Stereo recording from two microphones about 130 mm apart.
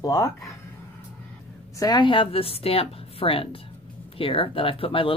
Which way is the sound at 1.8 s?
35° left (ahead or behind).